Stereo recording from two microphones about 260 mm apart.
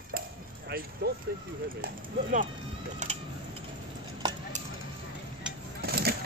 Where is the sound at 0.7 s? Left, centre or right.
Right.